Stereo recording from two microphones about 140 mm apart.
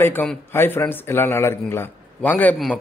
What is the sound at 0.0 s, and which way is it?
A man's voice, 15° left (ahead or behind).